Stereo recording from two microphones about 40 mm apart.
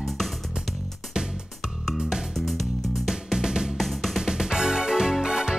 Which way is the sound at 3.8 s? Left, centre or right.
Centre.